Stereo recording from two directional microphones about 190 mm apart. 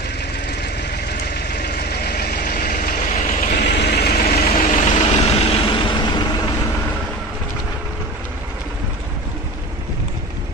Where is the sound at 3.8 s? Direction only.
60° left (ahead or behind).